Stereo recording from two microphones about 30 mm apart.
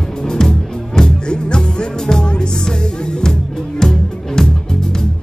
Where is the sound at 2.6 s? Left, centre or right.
Left.